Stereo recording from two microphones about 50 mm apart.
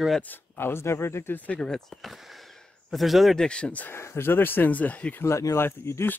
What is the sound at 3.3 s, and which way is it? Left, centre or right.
Speech, centre.